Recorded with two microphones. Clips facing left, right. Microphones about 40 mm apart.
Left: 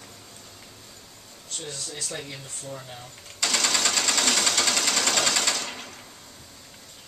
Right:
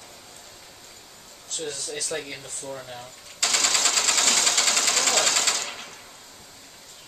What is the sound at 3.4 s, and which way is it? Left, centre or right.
Sewing machine, centre.